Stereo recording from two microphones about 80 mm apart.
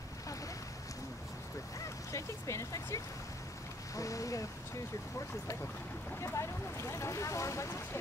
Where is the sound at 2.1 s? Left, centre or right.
Left.